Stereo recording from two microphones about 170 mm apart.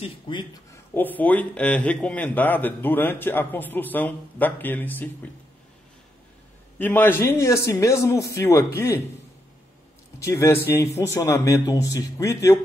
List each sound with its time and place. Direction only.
0.0 s speech: 25° left (ahead or behind)
0.9 s a man's voice: 10° left (ahead or behind)
6.8 s a man's voice: 10° left (ahead or behind)
10.2 s a man's voice: 15° left (ahead or behind)